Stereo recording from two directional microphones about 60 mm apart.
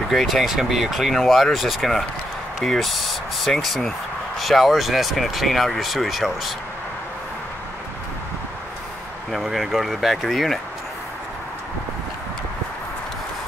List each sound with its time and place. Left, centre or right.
0.1 s speech: centre
9.3 s speech: centre